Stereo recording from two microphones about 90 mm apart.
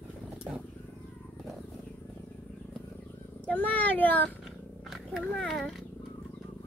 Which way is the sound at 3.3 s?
20° left (ahead or behind).